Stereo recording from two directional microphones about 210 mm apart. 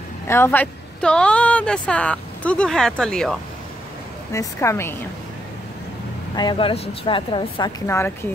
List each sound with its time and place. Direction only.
0.3 s speech: 10° left (ahead or behind)
4.3 s a woman's voice: 15° left (ahead or behind)
6.3 s speech: 20° left (ahead or behind)
7.8 s a woman's voice: 10° left (ahead or behind)